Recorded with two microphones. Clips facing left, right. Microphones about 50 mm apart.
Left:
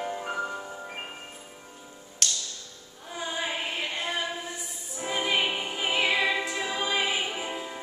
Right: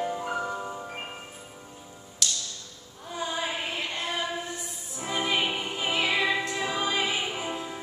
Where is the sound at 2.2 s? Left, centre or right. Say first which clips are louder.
Even; left.